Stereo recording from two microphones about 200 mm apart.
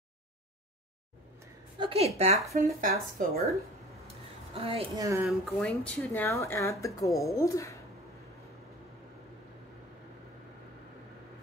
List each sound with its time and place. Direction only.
1.8 s a woman's voice: 30° right (ahead or behind)
2.5 s speech: 40° right (ahead or behind)
4.1 s a sound: 30° right (ahead or behind)
5.0 s speech: 15° right (ahead or behind)
5.4 s speech: 5° left (ahead or behind)